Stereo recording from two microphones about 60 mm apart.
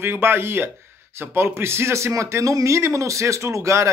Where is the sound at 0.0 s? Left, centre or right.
Right.